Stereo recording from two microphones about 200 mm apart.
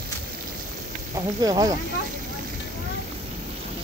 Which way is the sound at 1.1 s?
20° right (ahead or behind).